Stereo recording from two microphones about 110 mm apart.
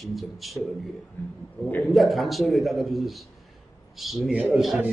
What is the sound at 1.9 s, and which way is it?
A man's voice, centre (ahead or behind).